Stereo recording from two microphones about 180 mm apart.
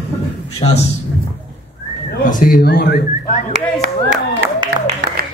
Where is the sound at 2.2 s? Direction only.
50° left (ahead or behind).